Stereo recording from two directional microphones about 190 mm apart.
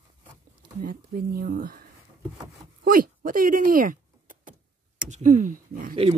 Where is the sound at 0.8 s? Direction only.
50° right (ahead or behind).